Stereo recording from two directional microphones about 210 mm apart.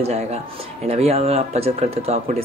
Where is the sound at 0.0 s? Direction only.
30° right (ahead or behind).